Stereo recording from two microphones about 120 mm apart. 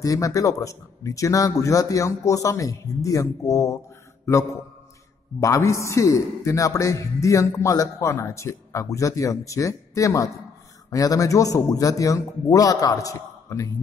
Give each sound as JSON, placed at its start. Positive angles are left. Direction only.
{"t": 0.0, "sound": "a man's voice", "side_deg": 30}
{"t": 5.4, "sound": "a man's voice", "side_deg": 25}